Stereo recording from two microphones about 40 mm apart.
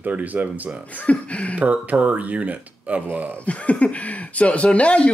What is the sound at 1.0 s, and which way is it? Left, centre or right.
Speech, left.